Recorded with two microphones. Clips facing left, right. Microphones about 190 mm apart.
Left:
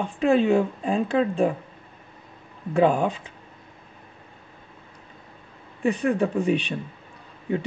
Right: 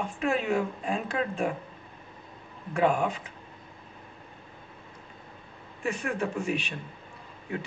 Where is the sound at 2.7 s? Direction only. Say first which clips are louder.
Left 5 dB; 35° left (ahead or behind).